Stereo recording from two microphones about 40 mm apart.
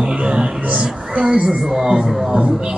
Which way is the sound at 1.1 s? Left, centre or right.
Right.